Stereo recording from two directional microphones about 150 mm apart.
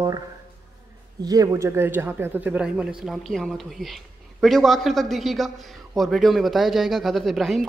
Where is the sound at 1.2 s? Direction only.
25° right (ahead or behind).